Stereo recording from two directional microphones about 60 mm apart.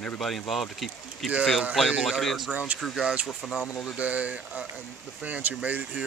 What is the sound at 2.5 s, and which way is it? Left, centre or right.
Speech, right.